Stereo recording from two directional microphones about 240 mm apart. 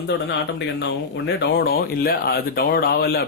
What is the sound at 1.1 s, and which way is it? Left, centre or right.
Speech, left.